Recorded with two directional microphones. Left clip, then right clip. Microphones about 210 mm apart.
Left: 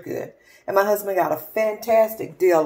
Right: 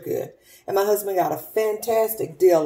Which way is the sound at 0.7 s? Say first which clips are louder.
Left 2 dB; 15° left (ahead or behind).